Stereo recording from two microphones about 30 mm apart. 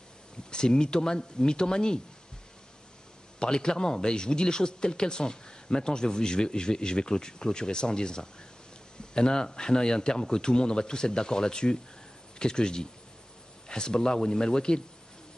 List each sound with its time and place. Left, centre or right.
0.5 s speech: left
3.3 s speech: left